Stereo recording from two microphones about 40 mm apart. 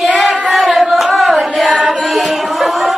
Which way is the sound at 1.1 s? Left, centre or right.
Centre.